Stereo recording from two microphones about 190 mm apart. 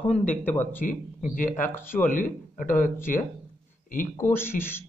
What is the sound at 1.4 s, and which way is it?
Speech, 45° left (ahead or behind).